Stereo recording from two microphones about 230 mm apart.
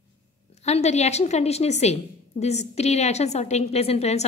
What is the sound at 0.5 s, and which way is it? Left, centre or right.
A woman's voice, left.